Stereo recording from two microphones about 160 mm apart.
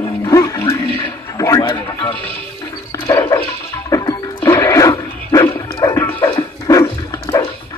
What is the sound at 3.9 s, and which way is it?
Music, 25° left (ahead or behind).